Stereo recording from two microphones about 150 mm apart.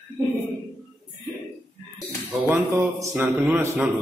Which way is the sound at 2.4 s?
15° right (ahead or behind).